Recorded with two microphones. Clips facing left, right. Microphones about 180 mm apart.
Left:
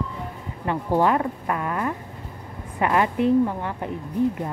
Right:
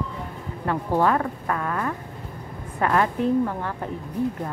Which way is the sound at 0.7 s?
15° left (ahead or behind).